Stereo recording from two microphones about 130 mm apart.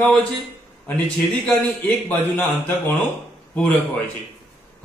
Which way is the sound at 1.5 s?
15° left (ahead or behind).